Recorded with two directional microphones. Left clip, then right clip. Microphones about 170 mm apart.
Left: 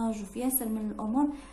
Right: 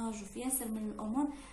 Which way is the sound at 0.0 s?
40° left (ahead or behind).